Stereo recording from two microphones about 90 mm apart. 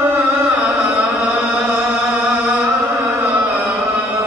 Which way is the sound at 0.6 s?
20° right (ahead or behind).